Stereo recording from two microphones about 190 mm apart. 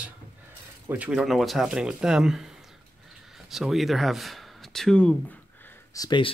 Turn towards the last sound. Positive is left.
turn(degrees=25)  # may be behind; listen again after turning